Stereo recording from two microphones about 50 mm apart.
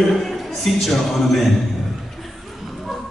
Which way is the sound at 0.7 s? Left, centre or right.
Centre.